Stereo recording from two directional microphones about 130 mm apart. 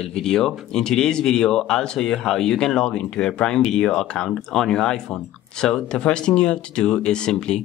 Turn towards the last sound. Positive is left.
turn(degrees=5)  # may be behind; listen again after turning